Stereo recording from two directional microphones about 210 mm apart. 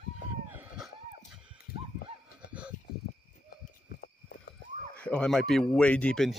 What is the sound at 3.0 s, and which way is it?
Horse, 45° left (ahead or behind).